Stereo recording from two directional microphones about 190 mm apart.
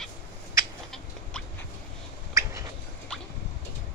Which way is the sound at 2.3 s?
15° right (ahead or behind).